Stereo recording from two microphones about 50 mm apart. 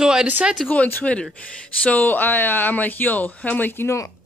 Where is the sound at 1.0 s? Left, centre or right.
Left.